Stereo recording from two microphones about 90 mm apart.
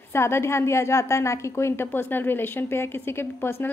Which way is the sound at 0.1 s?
30° left (ahead or behind).